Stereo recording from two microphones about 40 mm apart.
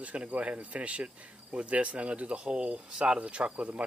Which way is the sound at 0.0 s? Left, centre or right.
Right.